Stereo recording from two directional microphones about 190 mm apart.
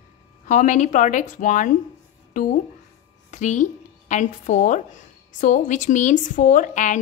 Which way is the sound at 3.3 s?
40° left (ahead or behind).